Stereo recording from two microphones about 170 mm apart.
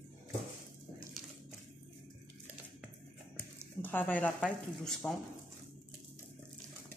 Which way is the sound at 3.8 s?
10° left (ahead or behind).